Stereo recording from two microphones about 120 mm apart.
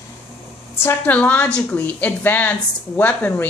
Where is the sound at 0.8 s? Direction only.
15° left (ahead or behind).